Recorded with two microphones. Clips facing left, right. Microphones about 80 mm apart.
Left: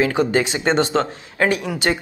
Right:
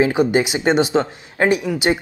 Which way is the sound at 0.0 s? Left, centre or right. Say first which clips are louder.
Right 2 dB; centre.